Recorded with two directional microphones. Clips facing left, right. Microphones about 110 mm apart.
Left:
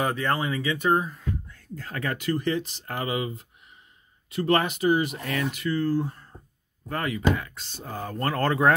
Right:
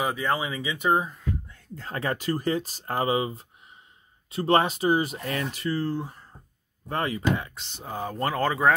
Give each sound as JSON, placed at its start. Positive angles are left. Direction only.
{"t": 0.0, "sound": "speech", "side_deg": -5}